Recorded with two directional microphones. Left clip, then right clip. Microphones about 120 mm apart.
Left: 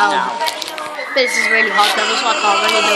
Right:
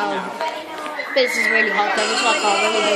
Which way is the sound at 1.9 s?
25° left (ahead or behind).